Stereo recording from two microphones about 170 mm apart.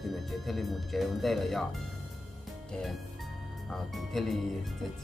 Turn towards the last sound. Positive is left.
turn(degrees=0)  # may be behind; listen again after turning